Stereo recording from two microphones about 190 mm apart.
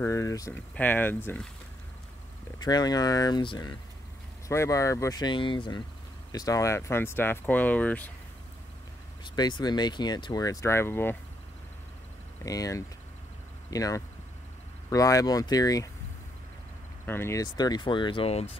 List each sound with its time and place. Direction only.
0.0 s speech: 15° left (ahead or behind)
2.6 s speech: 20° left (ahead or behind)
9.2 s speech: 20° left (ahead or behind)
12.4 s speech: 20° left (ahead or behind)
17.0 s speech: 10° left (ahead or behind); by 18.5 s 30° left (ahead or behind)